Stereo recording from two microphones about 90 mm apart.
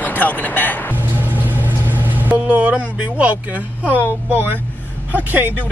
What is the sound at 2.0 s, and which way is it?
Vehicle, 20° right (ahead or behind).